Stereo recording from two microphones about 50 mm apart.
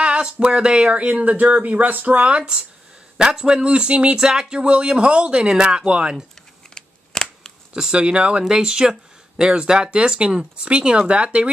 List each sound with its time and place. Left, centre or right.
0.0 s speech: right
6.7 s a sound: centre
7.9 s speech: right